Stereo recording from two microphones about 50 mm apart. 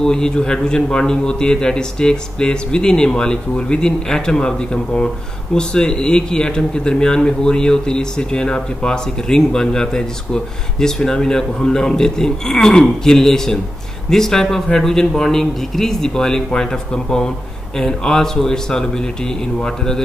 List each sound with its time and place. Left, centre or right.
0.0 s a man's voice: centre